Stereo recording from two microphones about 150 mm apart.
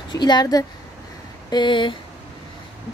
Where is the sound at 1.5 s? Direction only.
30° left (ahead or behind).